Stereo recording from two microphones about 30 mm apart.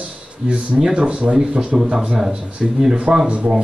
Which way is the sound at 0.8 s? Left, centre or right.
Right.